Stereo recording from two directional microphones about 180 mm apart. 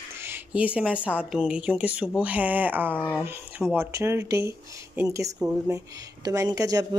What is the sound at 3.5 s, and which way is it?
A woman's voice, 10° right (ahead or behind).